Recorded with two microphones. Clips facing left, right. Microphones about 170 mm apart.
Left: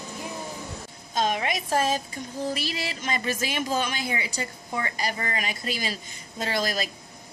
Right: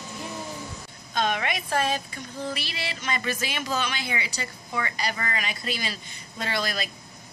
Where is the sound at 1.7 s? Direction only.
40° left (ahead or behind).